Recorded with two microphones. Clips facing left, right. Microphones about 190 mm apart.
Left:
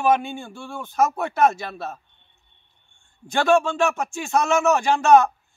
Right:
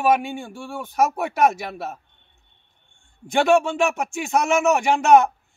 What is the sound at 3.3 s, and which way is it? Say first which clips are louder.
A man's voice: right 1 dB; 20° right (ahead or behind).